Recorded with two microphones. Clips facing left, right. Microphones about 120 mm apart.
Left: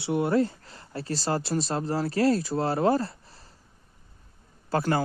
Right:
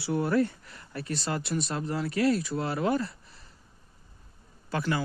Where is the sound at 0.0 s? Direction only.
20° left (ahead or behind).